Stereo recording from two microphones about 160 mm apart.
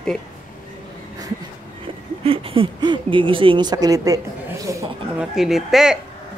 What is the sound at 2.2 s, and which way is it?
Speech, 35° right (ahead or behind).